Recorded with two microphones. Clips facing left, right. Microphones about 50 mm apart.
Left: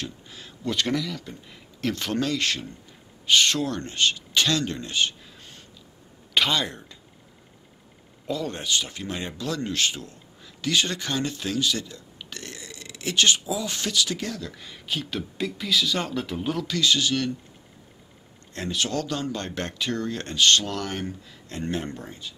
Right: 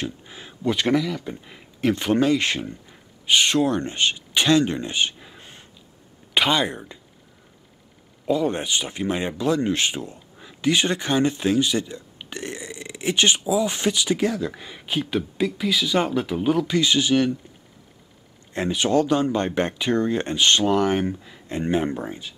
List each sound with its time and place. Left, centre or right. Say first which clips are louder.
0.0 s speech: right 5 dB; right
8.3 s speech: right 6 dB; right
18.5 s speech: right 7 dB; centre